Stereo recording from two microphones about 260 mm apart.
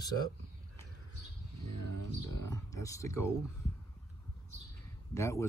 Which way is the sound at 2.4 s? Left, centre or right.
Centre.